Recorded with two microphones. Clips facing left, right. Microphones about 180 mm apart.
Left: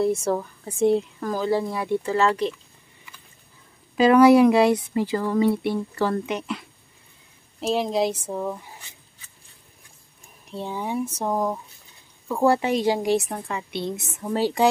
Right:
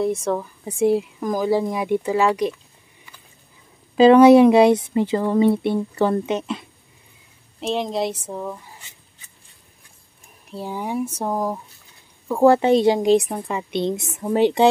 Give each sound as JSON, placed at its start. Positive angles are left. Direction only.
{"t": 0.0, "sound": "speech", "side_deg": 0}
{"t": 3.9, "sound": "speech", "side_deg": -25}
{"t": 7.6, "sound": "speech", "side_deg": 5}
{"t": 10.5, "sound": "speech", "side_deg": -10}
{"t": 12.3, "sound": "speech", "side_deg": -20}